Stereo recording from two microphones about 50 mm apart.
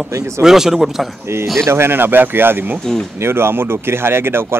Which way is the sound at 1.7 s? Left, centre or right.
Right.